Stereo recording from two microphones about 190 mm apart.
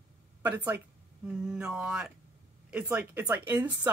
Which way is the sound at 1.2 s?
5° right (ahead or behind).